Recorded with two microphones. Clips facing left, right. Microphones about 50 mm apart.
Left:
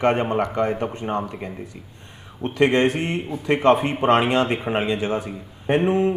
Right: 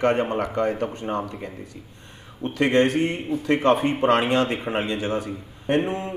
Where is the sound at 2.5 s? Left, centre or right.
Centre.